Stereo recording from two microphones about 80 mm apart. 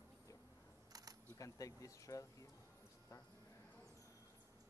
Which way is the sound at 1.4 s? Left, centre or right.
Left.